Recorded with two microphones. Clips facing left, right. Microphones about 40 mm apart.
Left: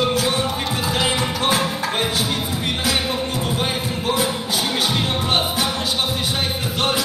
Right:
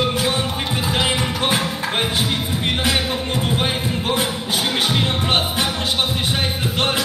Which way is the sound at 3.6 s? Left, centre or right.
Right.